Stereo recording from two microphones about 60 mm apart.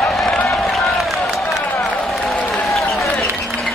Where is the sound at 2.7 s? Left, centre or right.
Centre.